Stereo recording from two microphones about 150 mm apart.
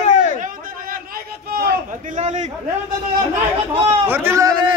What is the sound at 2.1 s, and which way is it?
Speech, 55° right (ahead or behind).